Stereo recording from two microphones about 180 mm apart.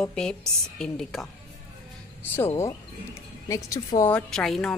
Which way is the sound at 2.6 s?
15° left (ahead or behind).